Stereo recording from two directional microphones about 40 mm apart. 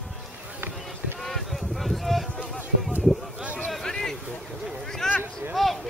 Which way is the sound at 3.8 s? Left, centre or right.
Centre.